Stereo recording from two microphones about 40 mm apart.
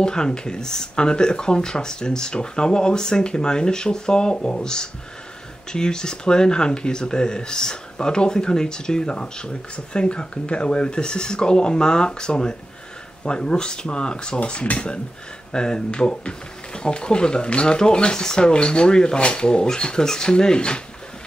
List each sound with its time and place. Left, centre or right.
0.0 s speech: centre